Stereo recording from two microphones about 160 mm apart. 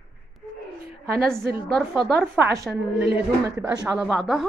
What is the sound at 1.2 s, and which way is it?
Speech, 5° left (ahead or behind).